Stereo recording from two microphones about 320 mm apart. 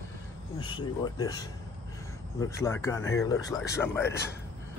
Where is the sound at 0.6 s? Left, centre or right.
Centre.